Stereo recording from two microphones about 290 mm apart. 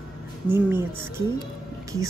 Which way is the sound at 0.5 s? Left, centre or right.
Centre.